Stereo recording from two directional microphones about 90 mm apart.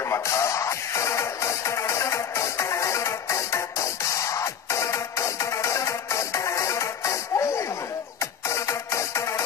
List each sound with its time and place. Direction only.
0.1 s music: 35° left (ahead or behind)